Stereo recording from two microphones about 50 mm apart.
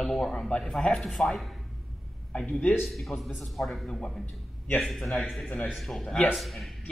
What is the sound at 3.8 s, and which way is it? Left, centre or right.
Speech, centre.